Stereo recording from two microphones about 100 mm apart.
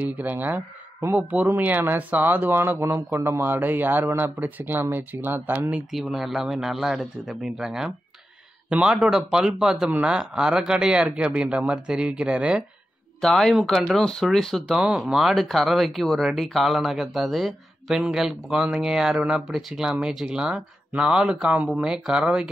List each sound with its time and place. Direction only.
0.2 s speech: 15° right (ahead or behind)
5.9 s speech: 5° right (ahead or behind)
13.2 s speech: 5° left (ahead or behind)